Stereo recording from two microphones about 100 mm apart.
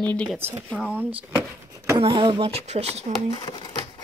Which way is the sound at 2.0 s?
60° right (ahead or behind).